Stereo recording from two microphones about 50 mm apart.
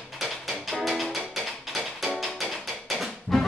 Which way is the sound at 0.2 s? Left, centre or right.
Centre.